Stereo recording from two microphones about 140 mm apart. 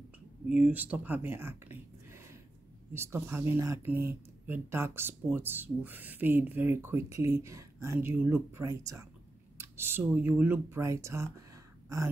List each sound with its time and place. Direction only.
0.5 s speech: 10° right (ahead or behind)